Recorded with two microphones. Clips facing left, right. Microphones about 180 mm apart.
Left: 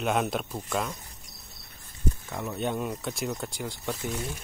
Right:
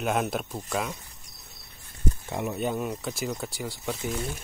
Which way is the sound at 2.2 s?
20° right (ahead or behind).